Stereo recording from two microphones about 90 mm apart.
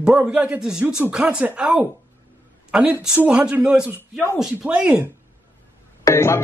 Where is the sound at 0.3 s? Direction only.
10° right (ahead or behind).